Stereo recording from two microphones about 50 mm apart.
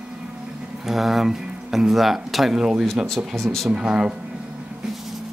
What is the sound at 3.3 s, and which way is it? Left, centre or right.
Speech, centre.